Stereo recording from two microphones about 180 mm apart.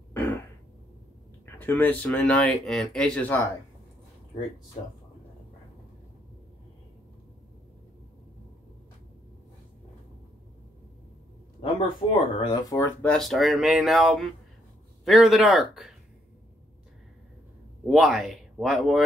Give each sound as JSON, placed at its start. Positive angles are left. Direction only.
{"t": 1.4, "sound": "speech", "side_deg": 10}
{"t": 11.6, "sound": "speech", "side_deg": 25}
{"t": 13.1, "sound": "speech", "side_deg": 0}
{"t": 17.8, "sound": "speech", "side_deg": 0}